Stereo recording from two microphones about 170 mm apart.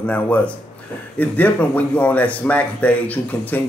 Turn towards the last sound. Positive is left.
turn(degrees=10)  # may be behind; listen again after turning